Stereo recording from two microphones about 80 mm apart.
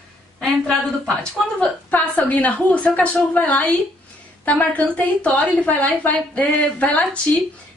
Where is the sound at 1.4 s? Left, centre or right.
Centre.